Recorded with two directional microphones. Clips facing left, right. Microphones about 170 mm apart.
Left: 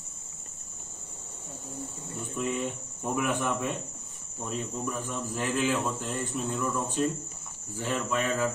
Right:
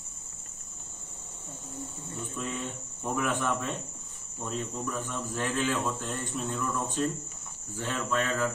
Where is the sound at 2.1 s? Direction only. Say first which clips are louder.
Left 5 dB; 10° left (ahead or behind).